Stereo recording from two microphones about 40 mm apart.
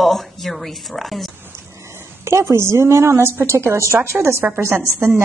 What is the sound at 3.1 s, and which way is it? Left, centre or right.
A woman's voice, right.